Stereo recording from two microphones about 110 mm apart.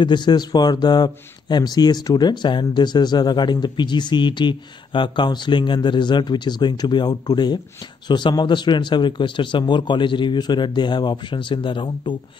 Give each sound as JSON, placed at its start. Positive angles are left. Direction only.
{"t": 0.0, "sound": "speech", "side_deg": 45}